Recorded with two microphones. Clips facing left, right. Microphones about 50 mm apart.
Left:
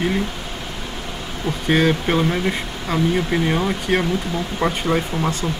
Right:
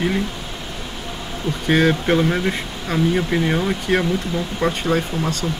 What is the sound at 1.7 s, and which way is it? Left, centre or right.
Speech, centre.